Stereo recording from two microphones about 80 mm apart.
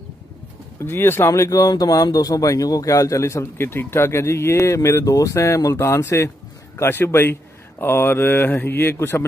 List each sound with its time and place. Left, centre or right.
0.7 s speech: left